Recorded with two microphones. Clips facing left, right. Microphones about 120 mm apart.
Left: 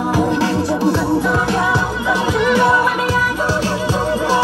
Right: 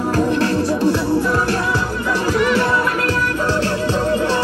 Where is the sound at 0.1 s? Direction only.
15° left (ahead or behind).